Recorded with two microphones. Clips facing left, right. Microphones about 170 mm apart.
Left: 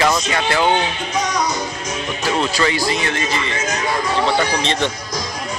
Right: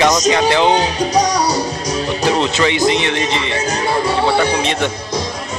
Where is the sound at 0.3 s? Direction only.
20° right (ahead or behind).